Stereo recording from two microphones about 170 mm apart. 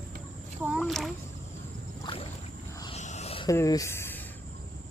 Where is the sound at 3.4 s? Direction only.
20° left (ahead or behind).